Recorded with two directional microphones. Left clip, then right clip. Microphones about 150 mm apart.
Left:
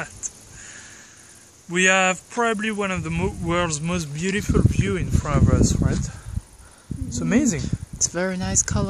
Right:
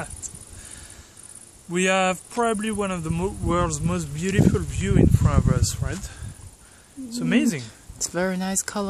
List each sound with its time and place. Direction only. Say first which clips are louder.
1.7 s speech: left 3 dB; centre (ahead or behind)
3.4 s speech: left 1 dB; 30° left (ahead or behind)
4.2 s speech: even; 65° left (ahead or behind); by 5.8 s 45° left (ahead or behind)
5.8 s speech: left 6 dB; 25° left (ahead or behind)
7.1 s speech: even; 45° left (ahead or behind)
7.6 s speech: left 7 dB; 5° right (ahead or behind)